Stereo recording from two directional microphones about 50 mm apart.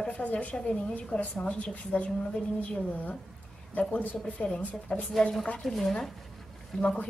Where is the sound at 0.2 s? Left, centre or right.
Left.